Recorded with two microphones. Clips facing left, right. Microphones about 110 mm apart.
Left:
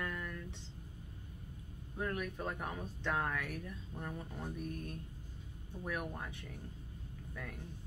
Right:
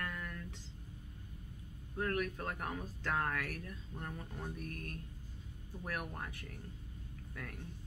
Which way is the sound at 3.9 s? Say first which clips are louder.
Left 1 dB; 25° left (ahead or behind).